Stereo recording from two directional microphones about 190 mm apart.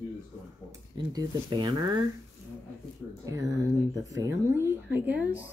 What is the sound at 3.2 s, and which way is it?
Speech, 15° right (ahead or behind).